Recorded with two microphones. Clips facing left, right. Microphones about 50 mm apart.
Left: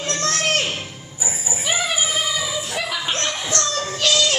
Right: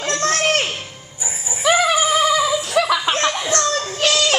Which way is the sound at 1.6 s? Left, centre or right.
Right.